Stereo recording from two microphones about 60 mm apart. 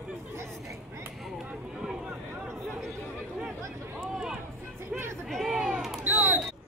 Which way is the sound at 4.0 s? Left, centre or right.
Centre.